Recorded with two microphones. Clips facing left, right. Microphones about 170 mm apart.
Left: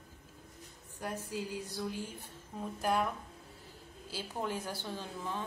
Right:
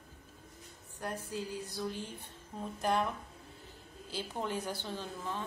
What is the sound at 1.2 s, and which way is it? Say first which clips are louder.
A woman's voice: even; 10° left (ahead or behind).